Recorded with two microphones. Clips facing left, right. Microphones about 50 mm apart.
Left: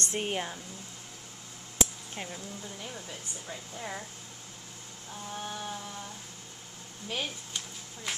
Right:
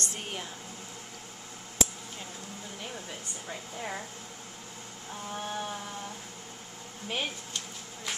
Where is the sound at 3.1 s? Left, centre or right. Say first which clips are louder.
Right 2 dB; centre.